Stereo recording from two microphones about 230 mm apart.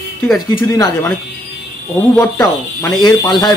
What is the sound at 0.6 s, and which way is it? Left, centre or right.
Speech, centre.